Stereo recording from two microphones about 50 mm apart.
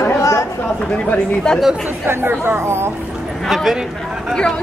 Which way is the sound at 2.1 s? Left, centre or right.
Right.